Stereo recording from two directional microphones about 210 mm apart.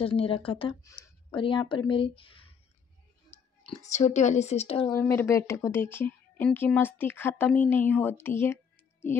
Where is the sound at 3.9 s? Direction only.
35° left (ahead or behind).